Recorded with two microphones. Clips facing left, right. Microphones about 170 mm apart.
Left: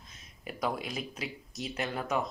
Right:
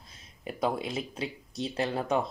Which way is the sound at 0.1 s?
30° right (ahead or behind).